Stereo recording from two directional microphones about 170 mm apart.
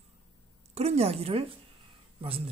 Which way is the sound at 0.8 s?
40° right (ahead or behind).